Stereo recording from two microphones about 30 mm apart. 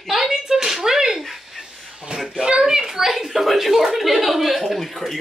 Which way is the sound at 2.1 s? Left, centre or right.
Right.